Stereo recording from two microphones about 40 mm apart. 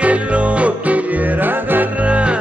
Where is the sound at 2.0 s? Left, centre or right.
Right.